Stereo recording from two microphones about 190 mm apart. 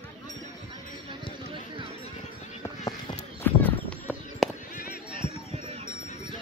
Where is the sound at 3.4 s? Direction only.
10° left (ahead or behind).